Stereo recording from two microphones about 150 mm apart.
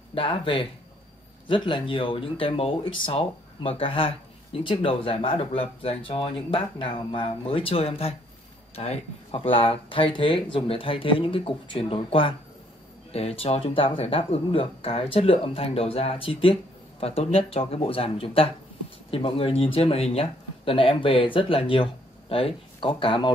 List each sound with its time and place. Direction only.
0.1 s speech: 35° left (ahead or behind)